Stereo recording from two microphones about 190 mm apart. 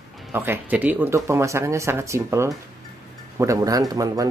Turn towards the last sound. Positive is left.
turn(degrees=-20)  # may be behind; listen again after turning